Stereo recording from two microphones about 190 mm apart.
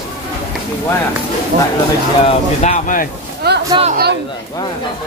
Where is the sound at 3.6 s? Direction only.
30° right (ahead or behind).